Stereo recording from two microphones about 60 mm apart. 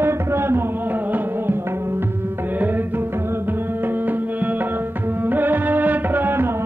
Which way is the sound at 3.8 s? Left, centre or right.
Right.